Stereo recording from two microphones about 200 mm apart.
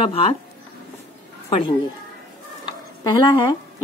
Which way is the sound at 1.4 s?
25° left (ahead or behind).